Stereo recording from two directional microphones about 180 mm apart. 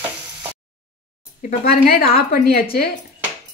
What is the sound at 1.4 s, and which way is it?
A woman's voice, 55° left (ahead or behind).